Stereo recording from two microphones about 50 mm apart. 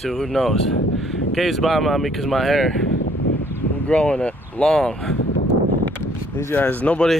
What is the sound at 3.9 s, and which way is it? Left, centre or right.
Speech, left.